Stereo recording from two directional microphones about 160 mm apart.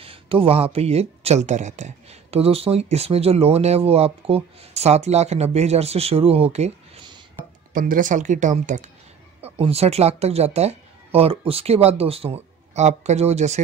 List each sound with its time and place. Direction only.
0.0 s speech: 35° right (ahead or behind)
7.7 s speech: 55° right (ahead or behind)